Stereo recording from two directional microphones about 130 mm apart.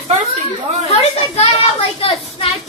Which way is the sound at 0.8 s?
55° left (ahead or behind).